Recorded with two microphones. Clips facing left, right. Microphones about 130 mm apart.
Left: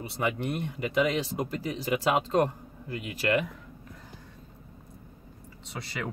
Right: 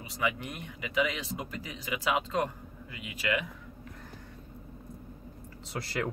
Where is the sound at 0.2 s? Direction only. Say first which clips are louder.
Left 4 dB; 40° left (ahead or behind).